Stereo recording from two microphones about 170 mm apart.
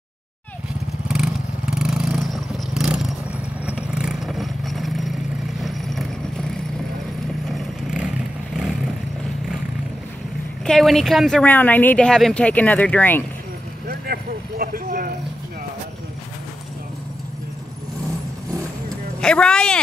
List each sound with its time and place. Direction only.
1.0 s vehicle: 5° right (ahead or behind)
10.6 s speech: centre (ahead or behind)
13.8 s vehicle: 65° right (ahead or behind)
19.2 s speech: 5° left (ahead or behind)